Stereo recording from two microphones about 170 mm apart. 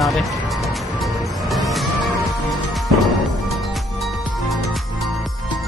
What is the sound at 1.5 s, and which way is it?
Music, centre (ahead or behind).